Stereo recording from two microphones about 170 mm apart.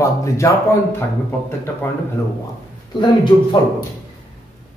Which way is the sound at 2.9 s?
25° left (ahead or behind).